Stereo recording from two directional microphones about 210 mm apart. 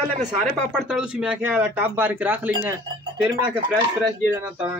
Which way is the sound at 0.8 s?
5° right (ahead or behind).